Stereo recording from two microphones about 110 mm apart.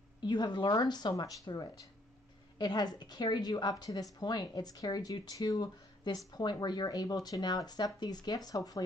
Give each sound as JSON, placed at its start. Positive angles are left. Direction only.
{"t": 0.2, "sound": "speech", "side_deg": 40}